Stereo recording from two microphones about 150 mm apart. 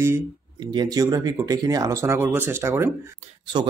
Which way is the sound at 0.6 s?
30° right (ahead or behind).